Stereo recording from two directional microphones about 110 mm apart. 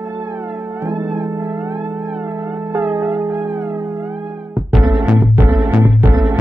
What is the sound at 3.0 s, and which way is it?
Music, 5° right (ahead or behind).